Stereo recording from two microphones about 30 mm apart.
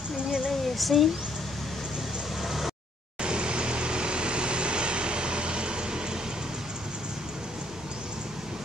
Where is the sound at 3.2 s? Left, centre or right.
Right.